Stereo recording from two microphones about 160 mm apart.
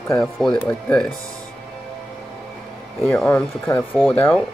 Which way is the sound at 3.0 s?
10° left (ahead or behind).